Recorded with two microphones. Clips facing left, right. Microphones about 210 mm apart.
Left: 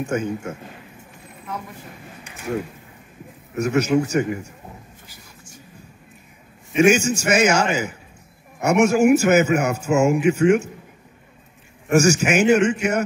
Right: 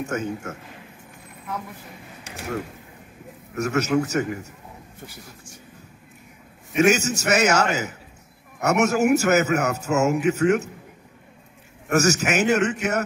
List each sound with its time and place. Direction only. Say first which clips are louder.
0.0 s a man's voice: left 3 dB; 15° left (ahead or behind)
3.6 s a man's voice: left 3 dB; 15° left (ahead or behind)
6.8 s a man's voice: left 3 dB; 15° left (ahead or behind)
11.9 s a man's voice: left 4 dB; 15° left (ahead or behind)